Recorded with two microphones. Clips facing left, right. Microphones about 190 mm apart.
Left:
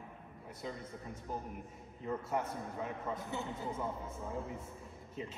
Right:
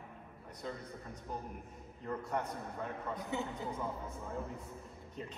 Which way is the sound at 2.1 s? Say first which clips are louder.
Left 1 dB; 5° left (ahead or behind).